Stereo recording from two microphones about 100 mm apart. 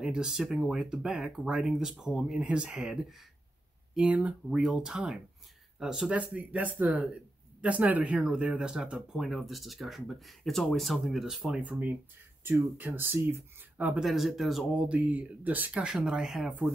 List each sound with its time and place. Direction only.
0.0 s speech: 5° right (ahead or behind)
12.4 s speech: 20° right (ahead or behind)
14.0 s speech: centre (ahead or behind)
14.8 s speech: 10° right (ahead or behind)